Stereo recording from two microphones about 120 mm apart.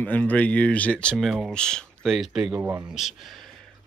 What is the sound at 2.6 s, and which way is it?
Speech, 15° right (ahead or behind).